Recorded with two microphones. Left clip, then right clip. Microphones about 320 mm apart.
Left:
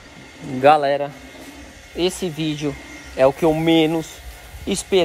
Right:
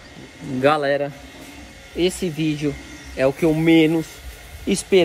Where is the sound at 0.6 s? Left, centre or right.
Centre.